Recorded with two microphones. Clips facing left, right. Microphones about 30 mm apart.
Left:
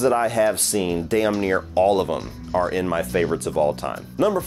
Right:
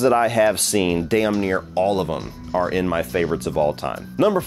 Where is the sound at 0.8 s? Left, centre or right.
Right.